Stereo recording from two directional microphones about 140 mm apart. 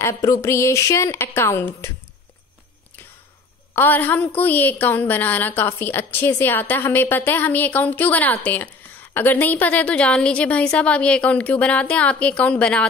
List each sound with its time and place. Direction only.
0.0 s speech: 20° left (ahead or behind)
3.7 s a woman's voice: 15° left (ahead or behind)